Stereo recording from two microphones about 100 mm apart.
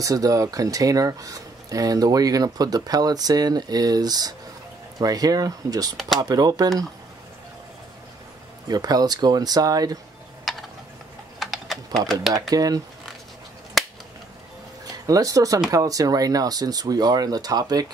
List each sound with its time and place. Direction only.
0.0 s speech: 35° right (ahead or behind)
8.6 s speech: 40° right (ahead or behind)
10.5 s ratchet: centre (ahead or behind)
11.3 s typing: centre (ahead or behind)
12.1 s speech: centre (ahead or behind)
12.4 s speech: 40° right (ahead or behind)
13.8 s a sound: centre (ahead or behind)
15.0 s speech: 35° right (ahead or behind)